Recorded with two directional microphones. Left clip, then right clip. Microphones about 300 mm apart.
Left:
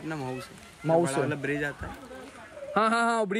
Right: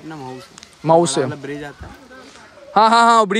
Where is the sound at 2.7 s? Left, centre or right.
Centre.